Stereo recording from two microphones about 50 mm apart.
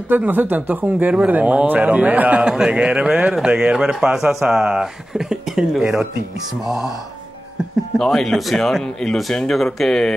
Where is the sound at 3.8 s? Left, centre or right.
Centre.